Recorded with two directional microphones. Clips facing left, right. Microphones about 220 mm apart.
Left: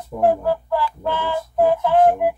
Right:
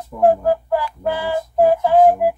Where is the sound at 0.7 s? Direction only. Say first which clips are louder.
Right 2 dB; 10° right (ahead or behind).